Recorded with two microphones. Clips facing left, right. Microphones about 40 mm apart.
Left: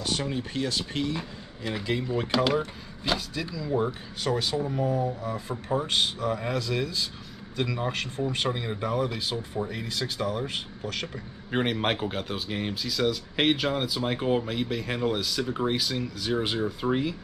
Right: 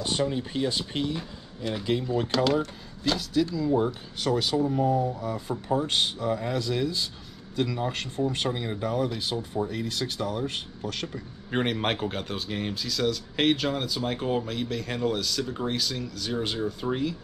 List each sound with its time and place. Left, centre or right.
0.2 s speech: centre
0.7 s speech: centre
1.1 s speech: centre
4.2 s speech: left
4.8 s speech: centre
5.2 s speech: centre
7.5 s speech: centre